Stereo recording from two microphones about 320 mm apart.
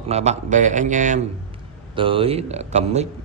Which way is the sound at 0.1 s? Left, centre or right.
Right.